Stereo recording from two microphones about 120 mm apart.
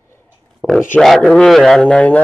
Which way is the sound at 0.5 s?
Centre (ahead or behind).